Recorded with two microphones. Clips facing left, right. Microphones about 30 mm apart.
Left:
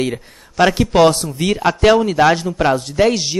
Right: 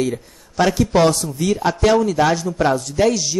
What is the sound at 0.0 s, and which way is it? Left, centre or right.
A man's voice, left.